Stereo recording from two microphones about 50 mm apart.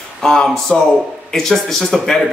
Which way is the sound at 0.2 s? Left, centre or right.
Centre.